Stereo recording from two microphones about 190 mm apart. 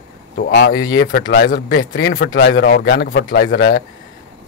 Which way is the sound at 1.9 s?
55° left (ahead or behind).